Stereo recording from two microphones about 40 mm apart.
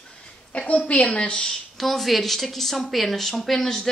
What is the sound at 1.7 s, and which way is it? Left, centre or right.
Speech, centre.